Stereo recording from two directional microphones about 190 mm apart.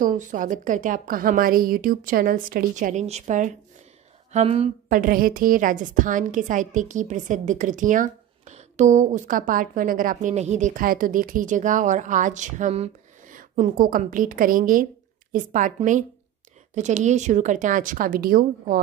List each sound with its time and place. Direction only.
0.0 s a woman's voice: 45° right (ahead or behind)
4.8 s a woman's voice: 45° right (ahead or behind)